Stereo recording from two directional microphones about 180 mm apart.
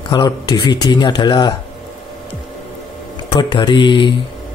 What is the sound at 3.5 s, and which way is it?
Speech, 25° left (ahead or behind).